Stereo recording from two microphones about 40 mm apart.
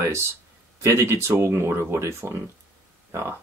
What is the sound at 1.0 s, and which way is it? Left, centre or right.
Speech, right.